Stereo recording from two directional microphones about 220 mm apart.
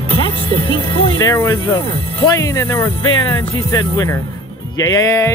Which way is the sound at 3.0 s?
70° left (ahead or behind).